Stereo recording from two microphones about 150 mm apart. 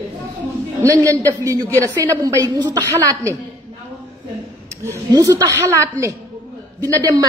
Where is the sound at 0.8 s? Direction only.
20° right (ahead or behind).